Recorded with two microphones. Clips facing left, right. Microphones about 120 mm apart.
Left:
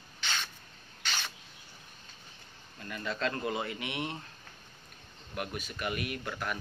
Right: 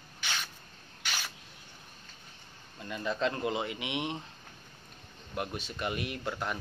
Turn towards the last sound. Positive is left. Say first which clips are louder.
# right 1 dB
turn(degrees=-25)  # may be behind; listen again after turning